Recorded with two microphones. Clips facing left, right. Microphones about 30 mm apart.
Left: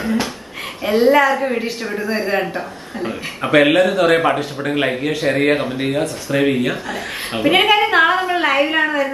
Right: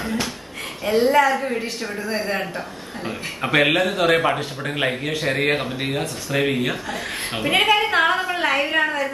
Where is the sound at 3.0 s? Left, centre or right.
Centre.